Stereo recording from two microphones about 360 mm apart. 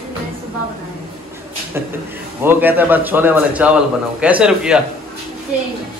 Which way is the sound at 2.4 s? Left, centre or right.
Centre.